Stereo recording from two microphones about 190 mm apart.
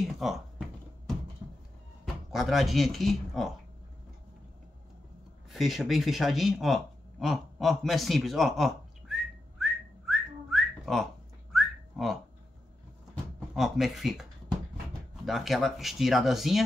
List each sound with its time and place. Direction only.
0.0 s music: centre (ahead or behind)
2.3 s speech: centre (ahead or behind)
5.5 s a sound: centre (ahead or behind)
11.5 s whistling: centre (ahead or behind)
13.6 s speech: centre (ahead or behind)
15.2 s speech: centre (ahead or behind)